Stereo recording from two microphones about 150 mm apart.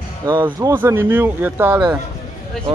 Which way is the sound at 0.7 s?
15° right (ahead or behind).